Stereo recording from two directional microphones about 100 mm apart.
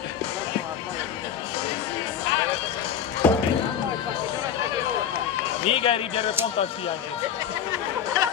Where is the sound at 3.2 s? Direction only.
20° left (ahead or behind).